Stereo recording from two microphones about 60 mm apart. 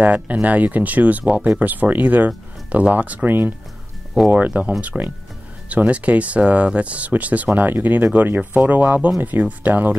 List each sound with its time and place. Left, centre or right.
0.0 s speech: right